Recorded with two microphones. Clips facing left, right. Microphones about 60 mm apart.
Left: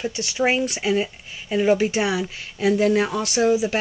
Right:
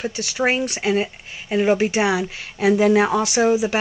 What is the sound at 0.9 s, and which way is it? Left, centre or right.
Speech, centre.